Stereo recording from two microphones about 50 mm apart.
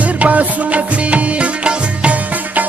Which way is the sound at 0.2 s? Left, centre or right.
Right.